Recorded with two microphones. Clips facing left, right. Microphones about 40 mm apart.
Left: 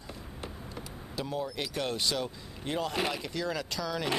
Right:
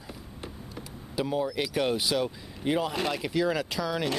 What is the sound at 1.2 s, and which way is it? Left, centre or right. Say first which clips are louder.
Speech: right 6 dB; centre.